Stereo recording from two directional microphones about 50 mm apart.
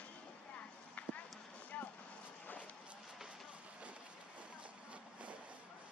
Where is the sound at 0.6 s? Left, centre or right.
Left.